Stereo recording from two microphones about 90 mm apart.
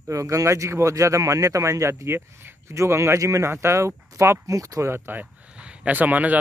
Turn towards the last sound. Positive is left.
turn(degrees=-20)  # may be behind; listen again after turning